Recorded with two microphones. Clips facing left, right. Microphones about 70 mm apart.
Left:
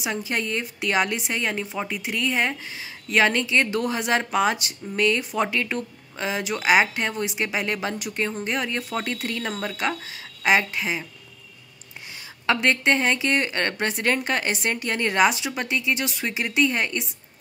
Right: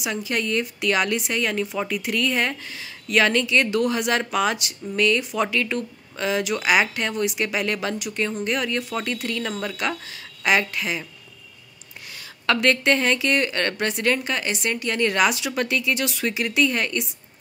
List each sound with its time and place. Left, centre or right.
0.0 s speech: left
12.4 s speech: left